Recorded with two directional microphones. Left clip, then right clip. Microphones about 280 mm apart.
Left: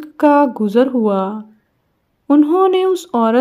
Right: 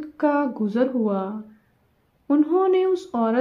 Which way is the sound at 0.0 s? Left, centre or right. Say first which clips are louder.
Left 10 dB; left.